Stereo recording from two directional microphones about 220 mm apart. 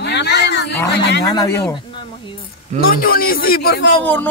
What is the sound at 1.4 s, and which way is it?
Speech, 15° left (ahead or behind).